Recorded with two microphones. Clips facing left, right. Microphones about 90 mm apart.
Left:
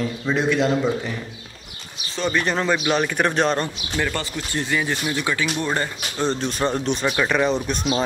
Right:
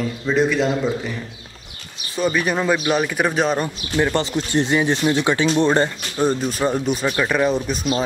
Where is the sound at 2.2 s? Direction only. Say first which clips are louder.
Right 2 dB; 10° right (ahead or behind).